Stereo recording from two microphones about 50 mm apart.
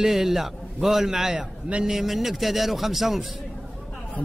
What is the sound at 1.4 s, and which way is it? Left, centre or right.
Speech, right.